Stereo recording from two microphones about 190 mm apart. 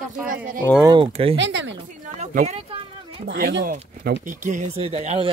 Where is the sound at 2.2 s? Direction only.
40° right (ahead or behind).